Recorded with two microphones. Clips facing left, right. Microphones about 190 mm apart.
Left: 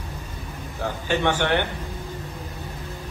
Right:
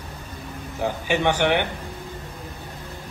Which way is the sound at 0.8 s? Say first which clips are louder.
Right 1 dB; 15° right (ahead or behind).